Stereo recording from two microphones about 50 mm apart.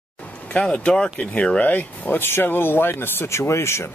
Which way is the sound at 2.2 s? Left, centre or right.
Left.